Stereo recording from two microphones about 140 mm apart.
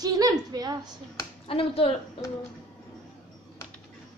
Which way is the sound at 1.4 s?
45° left (ahead or behind).